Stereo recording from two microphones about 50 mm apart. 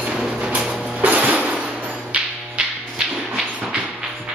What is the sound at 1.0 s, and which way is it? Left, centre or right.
Music, right.